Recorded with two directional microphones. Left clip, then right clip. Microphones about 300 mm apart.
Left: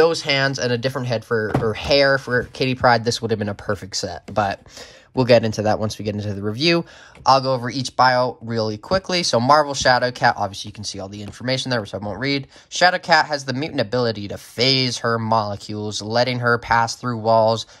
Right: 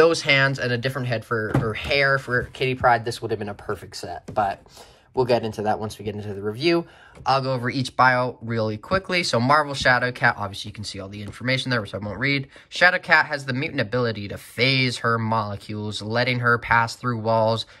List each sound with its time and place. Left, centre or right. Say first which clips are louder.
0.0 s speech: even; centre; by 4.2 s left
5.5 s speech: left 4 dB; left